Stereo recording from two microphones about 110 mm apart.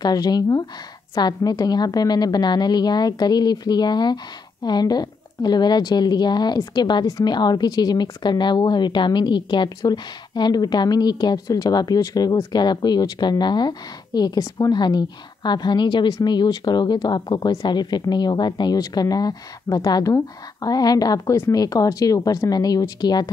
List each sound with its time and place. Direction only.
0.0 s a woman's voice: 40° left (ahead or behind)